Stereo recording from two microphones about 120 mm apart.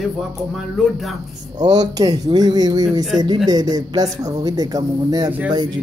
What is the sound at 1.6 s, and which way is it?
Speech, 35° right (ahead or behind).